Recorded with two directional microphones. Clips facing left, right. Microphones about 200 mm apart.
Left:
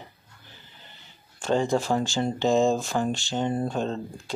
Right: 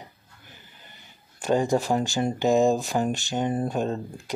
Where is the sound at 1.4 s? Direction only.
15° right (ahead or behind).